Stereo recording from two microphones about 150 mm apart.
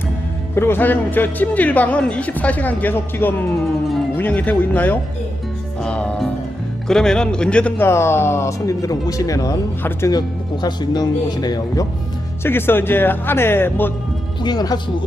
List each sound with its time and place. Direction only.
0.6 s speech: 15° left (ahead or behind)
5.8 s music: 5° left (ahead or behind)
6.9 s a man's voice: 5° left (ahead or behind); by 11.9 s 25° left (ahead or behind)
12.4 s speech: 15° left (ahead or behind)
14.4 s a man's voice: 25° left (ahead or behind)